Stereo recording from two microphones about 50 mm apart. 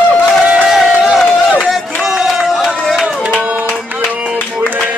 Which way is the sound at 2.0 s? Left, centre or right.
Centre.